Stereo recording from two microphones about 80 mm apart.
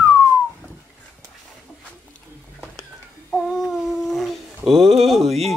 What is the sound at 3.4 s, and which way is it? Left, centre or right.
Humming, centre.